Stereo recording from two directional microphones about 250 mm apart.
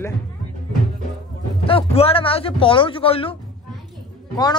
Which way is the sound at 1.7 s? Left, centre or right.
Left.